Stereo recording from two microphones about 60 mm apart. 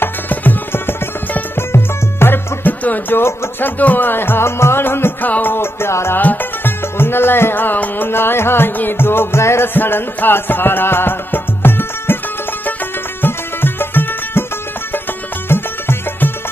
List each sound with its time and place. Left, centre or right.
0.0 s music: left
1.7 s music: left
2.8 s a sound: left
3.2 s music: left
6.1 s music: left
9.8 s music: left
13.2 s music: left
15.4 s music: left